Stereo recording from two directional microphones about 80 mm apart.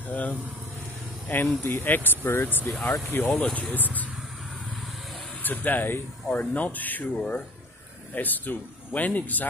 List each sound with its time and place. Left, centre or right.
0.1 s speech: centre
1.6 s speech: left
5.4 s speech: left